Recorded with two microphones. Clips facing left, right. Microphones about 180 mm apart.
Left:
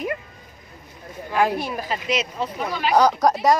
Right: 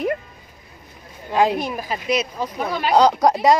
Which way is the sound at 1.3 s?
20° right (ahead or behind).